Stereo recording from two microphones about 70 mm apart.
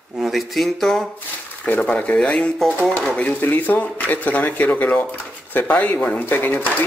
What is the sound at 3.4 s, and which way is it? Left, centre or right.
Speech, left.